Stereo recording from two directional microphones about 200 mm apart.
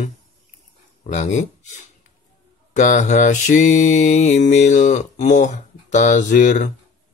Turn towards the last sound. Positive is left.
turn(degrees=40)  # may be behind; listen again after turning